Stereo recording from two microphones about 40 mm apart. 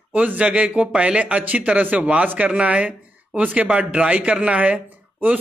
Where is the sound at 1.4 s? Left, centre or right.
Right.